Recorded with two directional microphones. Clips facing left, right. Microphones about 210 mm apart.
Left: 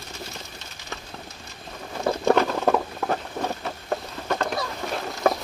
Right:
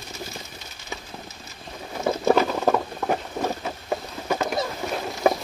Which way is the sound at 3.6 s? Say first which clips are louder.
Even; 5° right (ahead or behind).